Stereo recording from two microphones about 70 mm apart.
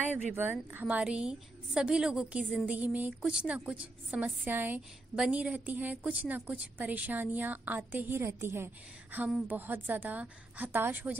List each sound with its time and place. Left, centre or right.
0.4 s a woman's voice: right
2.6 s a woman's voice: right
5.1 s a woman's voice: centre
5.4 s a woman's voice: right
8.2 s a woman's voice: right
9.5 s a woman's voice: right